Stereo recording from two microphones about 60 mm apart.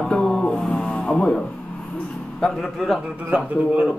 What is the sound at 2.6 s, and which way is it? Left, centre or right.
Speech, centre.